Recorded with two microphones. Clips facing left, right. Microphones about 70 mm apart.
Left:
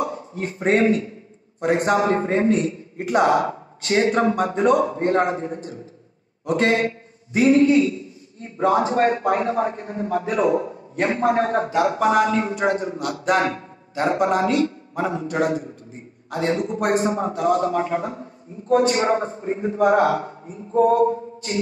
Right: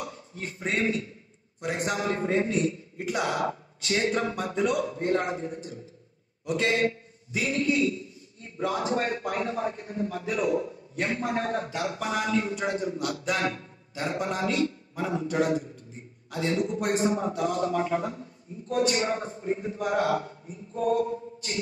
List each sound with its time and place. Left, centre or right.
0.0 s a man's voice: left